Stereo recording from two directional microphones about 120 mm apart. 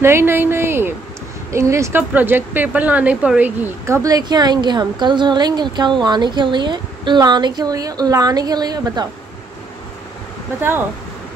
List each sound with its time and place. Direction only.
0.0 s a woman's voice: 20° right (ahead or behind)